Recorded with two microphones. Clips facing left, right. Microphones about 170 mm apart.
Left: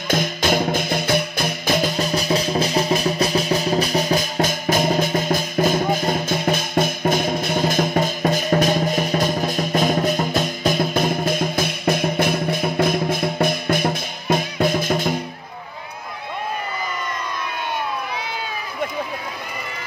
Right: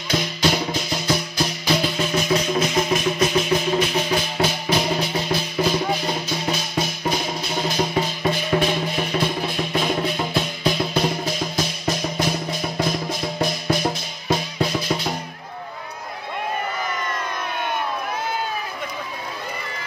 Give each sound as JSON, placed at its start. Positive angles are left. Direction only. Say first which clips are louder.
{"t": 0.1, "sound": "music", "louder": "left 2 dB", "side_deg": 50}